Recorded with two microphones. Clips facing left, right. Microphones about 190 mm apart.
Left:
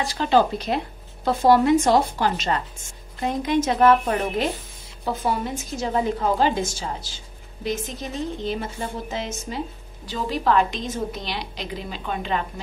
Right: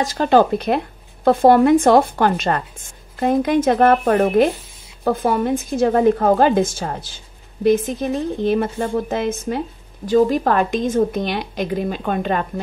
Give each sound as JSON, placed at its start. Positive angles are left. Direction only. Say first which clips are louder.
{"t": 0.0, "sound": "a woman's voice", "louder": "right 5 dB", "side_deg": -45}